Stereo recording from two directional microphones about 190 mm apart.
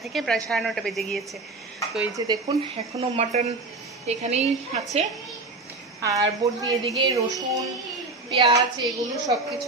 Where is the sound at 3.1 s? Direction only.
35° right (ahead or behind).